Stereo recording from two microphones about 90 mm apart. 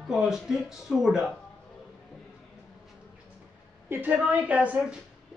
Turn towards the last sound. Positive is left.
turn(degrees=-15)  # may be behind; listen again after turning